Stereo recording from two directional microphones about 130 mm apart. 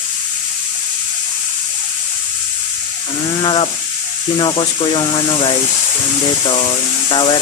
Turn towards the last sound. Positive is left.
turn(degrees=35)  # may be behind; listen again after turning